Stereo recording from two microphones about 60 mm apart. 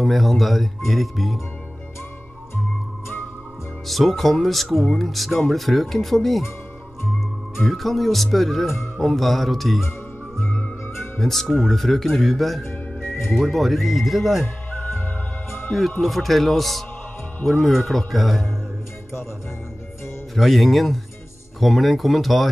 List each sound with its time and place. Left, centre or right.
0.0 s speech: centre
3.8 s speech: centre
7.5 s speech: centre
11.1 s speech: centre
14.4 s music: left
16.0 s speech: centre
20.3 s speech: centre